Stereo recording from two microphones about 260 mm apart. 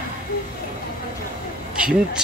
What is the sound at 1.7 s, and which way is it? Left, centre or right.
Speech, centre.